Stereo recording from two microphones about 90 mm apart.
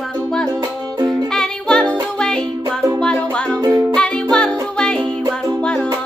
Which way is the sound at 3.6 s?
35° right (ahead or behind).